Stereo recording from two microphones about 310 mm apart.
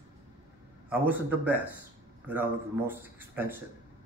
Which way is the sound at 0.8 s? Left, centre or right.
Centre.